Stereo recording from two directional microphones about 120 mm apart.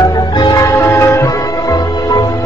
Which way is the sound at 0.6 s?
25° left (ahead or behind).